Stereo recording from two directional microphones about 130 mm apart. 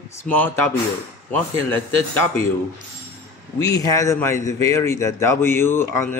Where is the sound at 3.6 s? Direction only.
25° left (ahead or behind).